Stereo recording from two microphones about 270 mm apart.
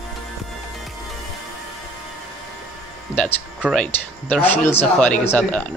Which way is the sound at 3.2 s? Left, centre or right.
Centre.